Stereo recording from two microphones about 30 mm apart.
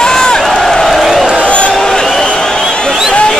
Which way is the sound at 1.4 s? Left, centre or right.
Left.